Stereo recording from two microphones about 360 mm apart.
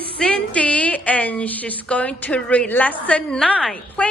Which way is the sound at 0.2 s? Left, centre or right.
Centre.